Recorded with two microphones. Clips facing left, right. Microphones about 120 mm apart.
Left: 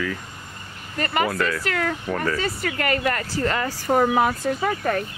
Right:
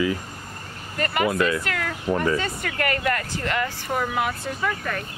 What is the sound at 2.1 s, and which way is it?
Speech, 25° right (ahead or behind).